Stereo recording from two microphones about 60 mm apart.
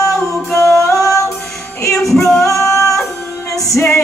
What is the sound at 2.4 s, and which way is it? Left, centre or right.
Singing, left.